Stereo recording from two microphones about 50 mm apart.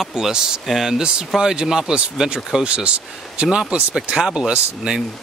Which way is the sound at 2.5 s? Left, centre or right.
Centre.